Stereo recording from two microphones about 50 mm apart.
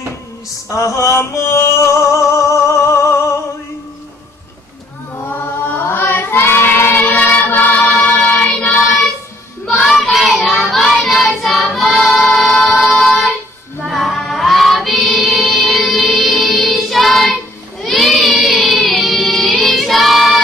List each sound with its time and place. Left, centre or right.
0.7 s music: left
5.3 s chant: left
6.0 s child singing: left
7.2 s music: left
8.5 s child singing: left
8.8 s child singing: centre
11.1 s choir: centre
13.8 s music: centre
17.8 s a sound: centre
19.1 s music: centre